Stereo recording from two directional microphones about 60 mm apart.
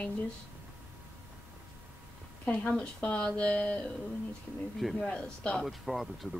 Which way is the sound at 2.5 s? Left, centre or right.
Centre.